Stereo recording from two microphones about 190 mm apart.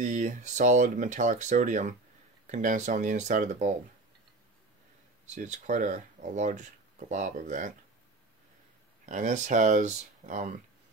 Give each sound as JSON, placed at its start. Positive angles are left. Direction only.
{"t": 0.0, "sound": "speech", "side_deg": -40}
{"t": 5.2, "sound": "speech", "side_deg": -40}
{"t": 9.0, "sound": "speech", "side_deg": -40}